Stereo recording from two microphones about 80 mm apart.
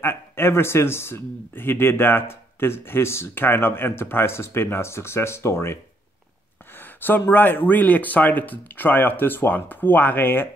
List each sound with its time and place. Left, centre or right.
0.0 s speech: left
6.8 s speech: left